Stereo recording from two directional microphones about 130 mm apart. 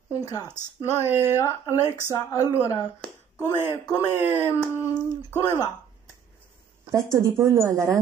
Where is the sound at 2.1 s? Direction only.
25° left (ahead or behind).